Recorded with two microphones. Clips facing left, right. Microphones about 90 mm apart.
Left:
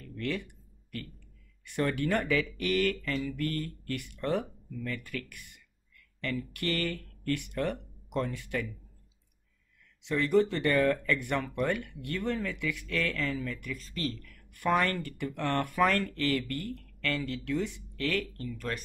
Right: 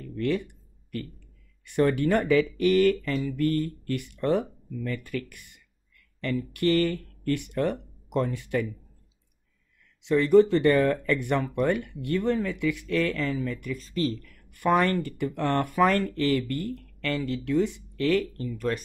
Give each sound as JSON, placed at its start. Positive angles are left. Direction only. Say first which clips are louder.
{"t": 1.8, "sound": "speech", "louder": "right 6 dB", "side_deg": -25}
{"t": 10.0, "sound": "speech", "louder": "right 7 dB", "side_deg": -20}